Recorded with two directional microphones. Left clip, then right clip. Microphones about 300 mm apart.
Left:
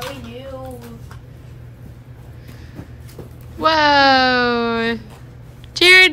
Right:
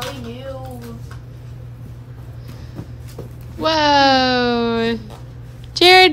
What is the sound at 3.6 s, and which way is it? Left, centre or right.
Speech, centre.